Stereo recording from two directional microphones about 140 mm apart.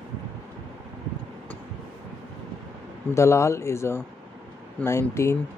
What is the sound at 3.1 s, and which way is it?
Speech, 20° left (ahead or behind).